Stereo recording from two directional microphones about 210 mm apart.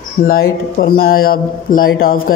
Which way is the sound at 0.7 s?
45° left (ahead or behind).